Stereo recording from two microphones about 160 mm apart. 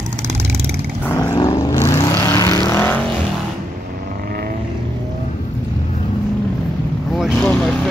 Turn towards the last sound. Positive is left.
turn(degrees=0)  # may be behind; listen again after turning